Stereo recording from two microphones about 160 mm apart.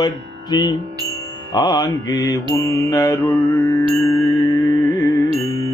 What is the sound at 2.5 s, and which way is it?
Mantra, 15° left (ahead or behind).